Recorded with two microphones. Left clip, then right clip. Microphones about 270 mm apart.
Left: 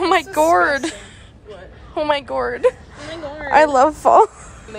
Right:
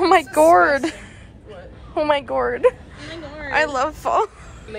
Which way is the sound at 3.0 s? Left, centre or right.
Left.